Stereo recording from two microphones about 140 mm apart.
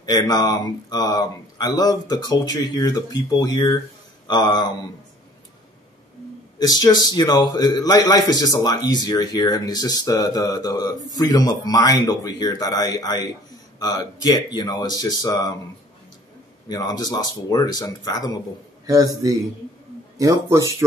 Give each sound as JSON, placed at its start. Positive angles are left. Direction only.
{"t": 0.0, "sound": "a man's voice", "side_deg": 30}
{"t": 6.6, "sound": "a man's voice", "side_deg": 30}
{"t": 16.6, "sound": "a man's voice", "side_deg": 30}
{"t": 18.9, "sound": "a man's voice", "side_deg": -25}